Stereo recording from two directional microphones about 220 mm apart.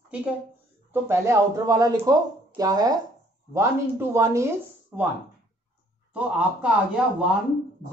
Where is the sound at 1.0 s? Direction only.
10° right (ahead or behind).